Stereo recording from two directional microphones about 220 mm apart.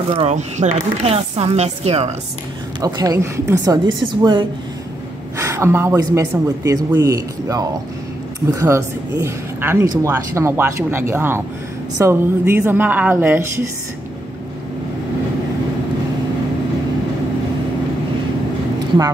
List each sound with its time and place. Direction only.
0.1 s speech: 30° right (ahead or behind)
2.8 s speech: 15° right (ahead or behind)